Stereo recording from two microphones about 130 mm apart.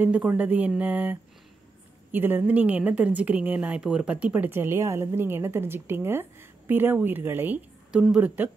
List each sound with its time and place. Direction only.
0.0 s a woman's voice: 10° right (ahead or behind)
2.1 s a woman's voice: 15° right (ahead or behind)